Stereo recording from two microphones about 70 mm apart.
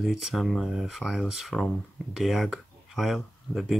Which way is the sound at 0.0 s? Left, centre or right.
Centre.